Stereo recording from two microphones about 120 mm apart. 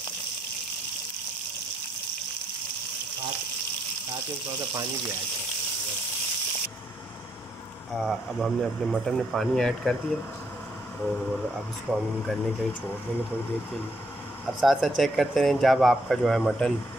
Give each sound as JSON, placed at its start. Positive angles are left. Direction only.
{"t": 7.9, "sound": "speech", "side_deg": 0}
{"t": 11.5, "sound": "speech", "side_deg": 0}
{"t": 14.6, "sound": "speech", "side_deg": 0}